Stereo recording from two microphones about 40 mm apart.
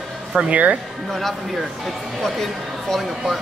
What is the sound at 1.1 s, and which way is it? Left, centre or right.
Speech, centre.